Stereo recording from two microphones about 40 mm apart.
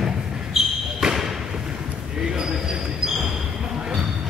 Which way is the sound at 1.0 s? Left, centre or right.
Centre.